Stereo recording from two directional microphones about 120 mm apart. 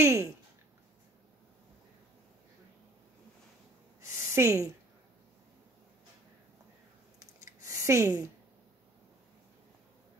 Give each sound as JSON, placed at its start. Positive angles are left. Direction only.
{"t": 0.0, "sound": "speech", "side_deg": -25}
{"t": 4.0, "sound": "a sound", "side_deg": -25}
{"t": 7.2, "sound": "scissors", "side_deg": -25}